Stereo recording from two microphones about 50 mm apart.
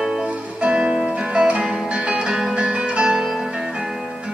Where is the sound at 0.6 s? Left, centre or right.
Right.